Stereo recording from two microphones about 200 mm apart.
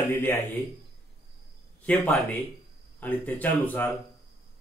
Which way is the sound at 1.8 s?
10° left (ahead or behind).